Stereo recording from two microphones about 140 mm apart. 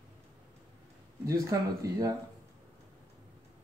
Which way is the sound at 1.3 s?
25° right (ahead or behind).